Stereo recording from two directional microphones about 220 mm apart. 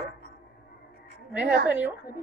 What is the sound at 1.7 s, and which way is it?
Speech, 10° right (ahead or behind).